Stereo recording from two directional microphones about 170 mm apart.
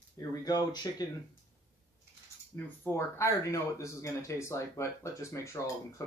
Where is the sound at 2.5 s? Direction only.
15° left (ahead or behind).